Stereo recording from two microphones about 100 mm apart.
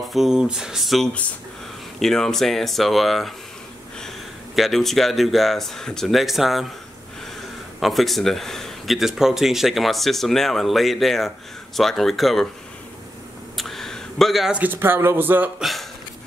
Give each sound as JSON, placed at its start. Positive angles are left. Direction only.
{"t": 0.1, "sound": "speech", "side_deg": -5}
{"t": 4.6, "sound": "speech", "side_deg": 0}
{"t": 7.8, "sound": "speech", "side_deg": 0}
{"t": 13.6, "sound": "a sound", "side_deg": 0}
{"t": 14.5, "sound": "speech", "side_deg": -20}